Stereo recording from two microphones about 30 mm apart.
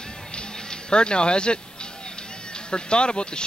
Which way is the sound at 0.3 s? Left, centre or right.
Left.